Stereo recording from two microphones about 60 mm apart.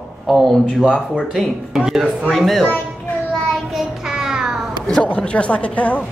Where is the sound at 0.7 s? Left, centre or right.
Centre.